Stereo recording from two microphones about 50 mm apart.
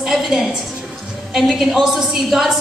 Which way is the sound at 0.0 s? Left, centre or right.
Centre.